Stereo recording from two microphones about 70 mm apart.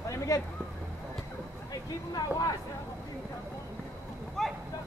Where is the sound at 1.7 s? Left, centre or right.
Left.